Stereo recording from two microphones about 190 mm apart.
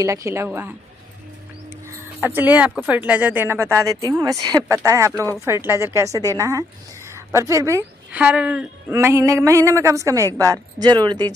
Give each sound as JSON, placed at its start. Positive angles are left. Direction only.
{"t": 0.0, "sound": "a woman's voice", "side_deg": -15}
{"t": 2.1, "sound": "a woman's voice", "side_deg": -10}